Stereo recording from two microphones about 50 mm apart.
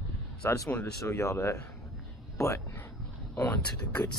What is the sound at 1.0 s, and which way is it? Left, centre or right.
Speech, left.